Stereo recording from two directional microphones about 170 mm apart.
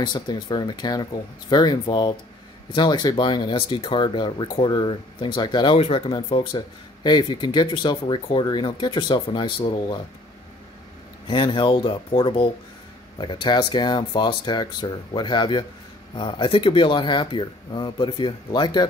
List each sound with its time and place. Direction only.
0.0 s speech: 25° left (ahead or behind)
11.2 s speech: 30° left (ahead or behind)